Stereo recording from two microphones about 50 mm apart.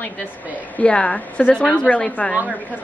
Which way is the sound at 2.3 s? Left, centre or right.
Right.